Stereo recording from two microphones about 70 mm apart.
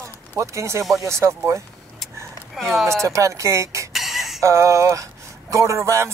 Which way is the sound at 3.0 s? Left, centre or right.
Right.